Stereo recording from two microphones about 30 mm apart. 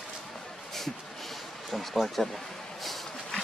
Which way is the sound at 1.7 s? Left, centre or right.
Centre.